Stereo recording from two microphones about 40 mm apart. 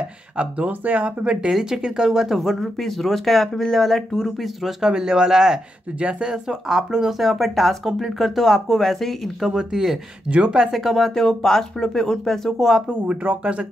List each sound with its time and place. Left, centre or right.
0.7 s speech: right
1.5 s speech: centre
4.6 s speech: centre
6.2 s speech: centre
9.5 s speech: centre
10.2 s speech: right
10.7 s speech: centre
12.5 s speech: centre
13.4 s speech: right